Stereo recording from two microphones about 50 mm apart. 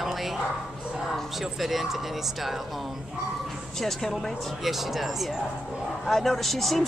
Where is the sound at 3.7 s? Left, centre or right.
Centre.